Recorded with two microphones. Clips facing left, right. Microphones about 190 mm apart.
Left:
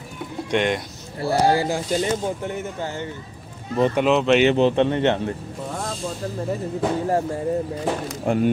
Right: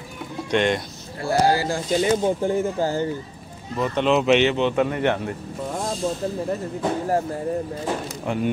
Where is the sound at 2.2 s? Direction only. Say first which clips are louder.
Right 6 dB; 30° right (ahead or behind).